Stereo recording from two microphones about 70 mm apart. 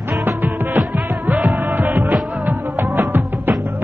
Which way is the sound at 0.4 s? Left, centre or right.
Centre.